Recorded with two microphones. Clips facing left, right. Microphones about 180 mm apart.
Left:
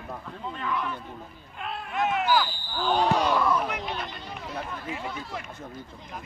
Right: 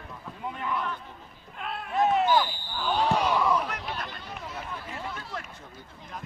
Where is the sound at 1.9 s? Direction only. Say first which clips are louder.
Right 3 dB; 35° right (ahead or behind).